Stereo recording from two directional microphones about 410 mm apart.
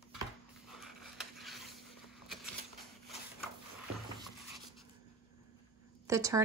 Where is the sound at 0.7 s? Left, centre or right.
Centre.